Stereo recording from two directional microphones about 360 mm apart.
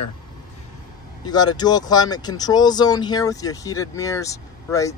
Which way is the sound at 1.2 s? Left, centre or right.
Centre.